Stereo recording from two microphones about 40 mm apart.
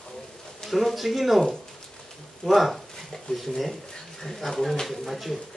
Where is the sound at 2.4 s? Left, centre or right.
Centre.